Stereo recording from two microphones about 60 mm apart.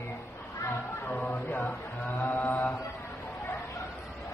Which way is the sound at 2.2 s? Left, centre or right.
Left.